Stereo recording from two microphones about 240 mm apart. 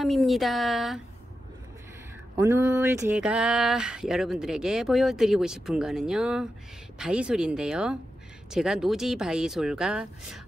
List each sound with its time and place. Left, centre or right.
0.0 s speech: centre
2.3 s speech: centre